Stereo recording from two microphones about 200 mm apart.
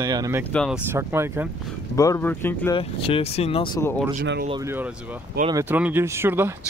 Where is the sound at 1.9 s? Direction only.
15° left (ahead or behind).